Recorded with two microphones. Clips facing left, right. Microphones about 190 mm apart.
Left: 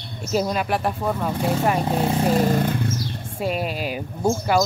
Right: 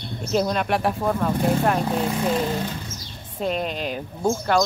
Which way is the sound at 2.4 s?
50° left (ahead or behind).